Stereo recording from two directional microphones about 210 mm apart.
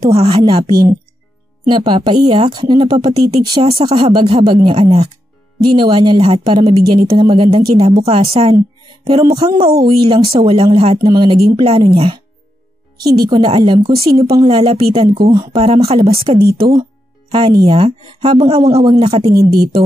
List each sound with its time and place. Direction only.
0.0 s speech: 30° right (ahead or behind)
1.7 s speech: 20° right (ahead or behind)
13.3 s speech: 20° right (ahead or behind)
14.5 s speech: 25° right (ahead or behind)
16.3 s a woman's voice: 50° right (ahead or behind)
17.3 s speech: 25° right (ahead or behind)